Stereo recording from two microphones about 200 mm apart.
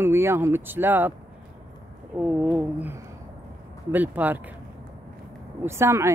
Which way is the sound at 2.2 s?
5° right (ahead or behind).